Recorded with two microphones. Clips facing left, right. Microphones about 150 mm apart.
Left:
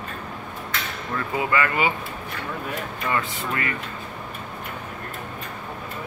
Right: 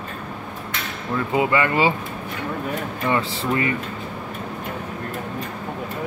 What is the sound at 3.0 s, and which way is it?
Speech, 25° right (ahead or behind).